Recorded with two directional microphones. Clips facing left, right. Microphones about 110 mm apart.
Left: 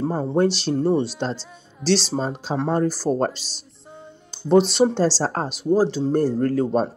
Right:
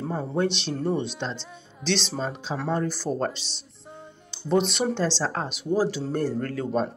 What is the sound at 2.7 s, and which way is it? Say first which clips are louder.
Speech: left 5 dB; 40° left (ahead or behind).